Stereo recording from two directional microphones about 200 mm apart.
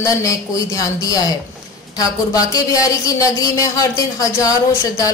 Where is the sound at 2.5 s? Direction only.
15° left (ahead or behind).